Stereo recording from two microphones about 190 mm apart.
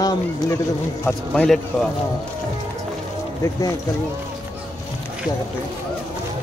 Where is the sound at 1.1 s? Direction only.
10° left (ahead or behind).